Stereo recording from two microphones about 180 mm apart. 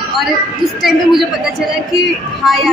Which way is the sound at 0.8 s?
Centre (ahead or behind).